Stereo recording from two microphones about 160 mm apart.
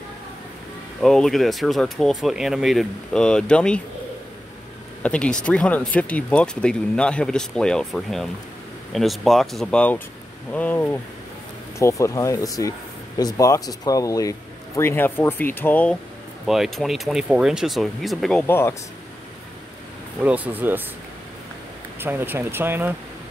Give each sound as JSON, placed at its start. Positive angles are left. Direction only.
{"t": 1.0, "sound": "speech", "side_deg": 0}
{"t": 5.0, "sound": "speech", "side_deg": 5}
{"t": 16.4, "sound": "speech", "side_deg": 0}
{"t": 18.5, "sound": "speech", "side_deg": 15}
{"t": 20.2, "sound": "speech", "side_deg": -10}
{"t": 22.0, "sound": "speech", "side_deg": -10}